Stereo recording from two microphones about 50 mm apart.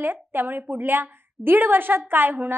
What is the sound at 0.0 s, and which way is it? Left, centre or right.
A woman's voice, right.